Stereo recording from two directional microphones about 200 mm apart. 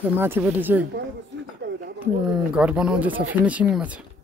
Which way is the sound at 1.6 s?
60° right (ahead or behind).